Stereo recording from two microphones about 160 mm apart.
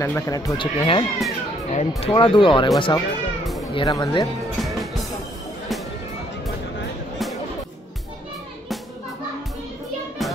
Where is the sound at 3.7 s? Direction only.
25° left (ahead or behind).